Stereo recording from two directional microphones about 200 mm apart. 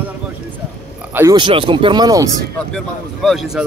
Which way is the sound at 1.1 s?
20° right (ahead or behind).